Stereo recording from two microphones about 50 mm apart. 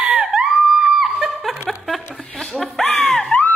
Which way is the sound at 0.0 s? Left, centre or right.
Centre.